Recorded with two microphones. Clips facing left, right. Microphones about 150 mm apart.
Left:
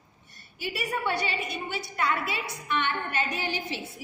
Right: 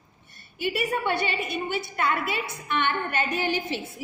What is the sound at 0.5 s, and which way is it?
A woman's voice, 60° right (ahead or behind).